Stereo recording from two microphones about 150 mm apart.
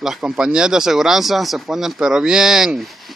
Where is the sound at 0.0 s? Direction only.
Centre (ahead or behind).